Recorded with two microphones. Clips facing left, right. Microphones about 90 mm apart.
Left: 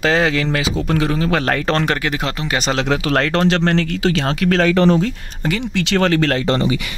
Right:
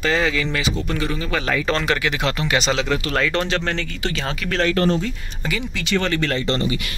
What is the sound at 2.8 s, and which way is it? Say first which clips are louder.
Speech: left 4 dB; 65° left (ahead or behind).